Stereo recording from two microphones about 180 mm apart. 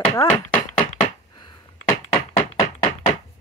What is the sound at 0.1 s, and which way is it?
Speech, 20° left (ahead or behind).